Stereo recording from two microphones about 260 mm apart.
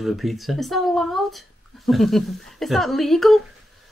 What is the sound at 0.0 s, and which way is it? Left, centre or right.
Speech, centre.